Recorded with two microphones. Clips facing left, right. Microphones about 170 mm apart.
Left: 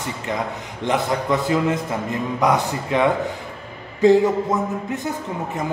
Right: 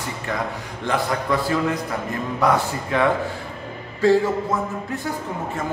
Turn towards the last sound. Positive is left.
turn(degrees=20)  # may be behind; listen again after turning